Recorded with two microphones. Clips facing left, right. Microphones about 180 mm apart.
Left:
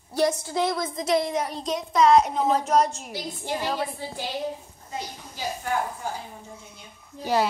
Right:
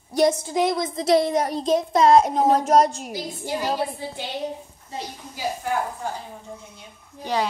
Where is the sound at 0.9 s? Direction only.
30° right (ahead or behind).